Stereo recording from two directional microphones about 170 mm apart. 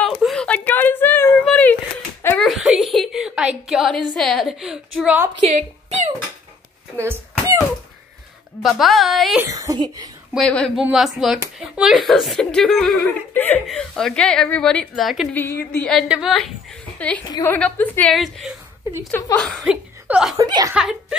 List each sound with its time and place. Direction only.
0.2 s a sound: 5° left (ahead or behind)
4.1 s speech: centre (ahead or behind)
5.4 s a woman's voice: 45° right (ahead or behind)
7.0 s a sound: 15° right (ahead or behind)
8.6 s speech: centre (ahead or behind)
9.4 s speech: 20° right (ahead or behind)
10.3 s speech: 5° left (ahead or behind)
17.2 s a woman's voice: 25° left (ahead or behind)
17.5 s a woman's voice: 10° left (ahead or behind)
18.1 s speech: centre (ahead or behind)
20.3 s speech: 20° right (ahead or behind)